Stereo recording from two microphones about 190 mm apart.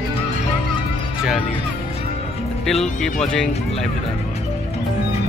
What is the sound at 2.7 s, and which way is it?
Speech, centre (ahead or behind).